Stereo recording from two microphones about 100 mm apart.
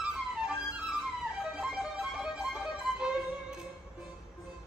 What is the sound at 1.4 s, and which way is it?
Music, 10° right (ahead or behind).